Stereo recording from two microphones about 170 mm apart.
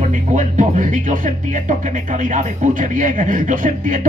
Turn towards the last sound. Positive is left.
turn(degrees=-50)  # may be behind; listen again after turning